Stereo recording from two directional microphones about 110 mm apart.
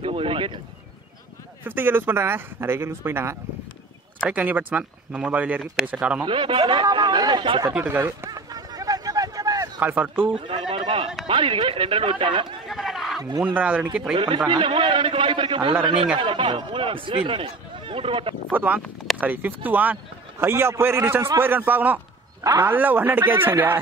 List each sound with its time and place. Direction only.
0.0 s a sound: 55° right (ahead or behind)
1.6 s a man's voice: 20° right (ahead or behind)
6.2 s speech: 50° right (ahead or behind)
7.7 s a man's voice: 15° right (ahead or behind)
8.3 s a sound: 35° right (ahead or behind)
9.8 s speech: 15° right (ahead or behind)
10.4 s a sound: 50° right (ahead or behind)
11.2 s speech: 50° right (ahead or behind)
12.6 s a sound: centre (ahead or behind)
13.6 s speech: 15° right (ahead or behind)
14.5 s speech: 45° right (ahead or behind)
18.5 s a man's voice: 15° right (ahead or behind)
22.4 s a man's voice: 30° right (ahead or behind)
22.7 s a man's voice: 15° right (ahead or behind)